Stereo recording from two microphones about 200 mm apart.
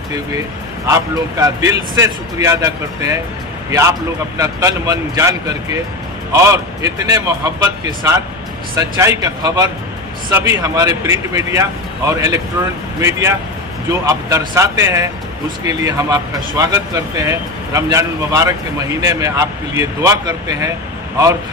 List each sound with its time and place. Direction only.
0.8 s speech: 15° right (ahead or behind)
4.4 s speech: 15° right (ahead or behind)